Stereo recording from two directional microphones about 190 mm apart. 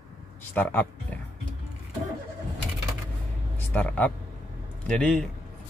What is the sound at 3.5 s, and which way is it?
A man's voice, 10° left (ahead or behind).